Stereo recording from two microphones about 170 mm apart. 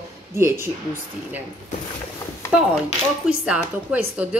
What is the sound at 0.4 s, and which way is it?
Speech, 15° right (ahead or behind).